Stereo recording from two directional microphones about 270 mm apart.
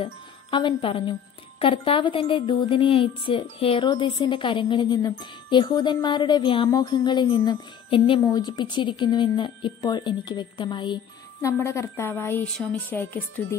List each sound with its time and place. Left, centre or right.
0.0 s a woman's voice: centre